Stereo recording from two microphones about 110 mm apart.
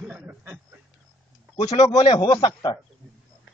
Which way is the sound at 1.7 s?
70° left (ahead or behind).